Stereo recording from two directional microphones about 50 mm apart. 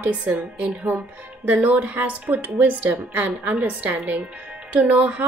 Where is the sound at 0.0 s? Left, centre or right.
Right.